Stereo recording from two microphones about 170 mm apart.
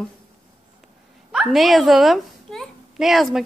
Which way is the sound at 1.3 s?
Centre (ahead or behind).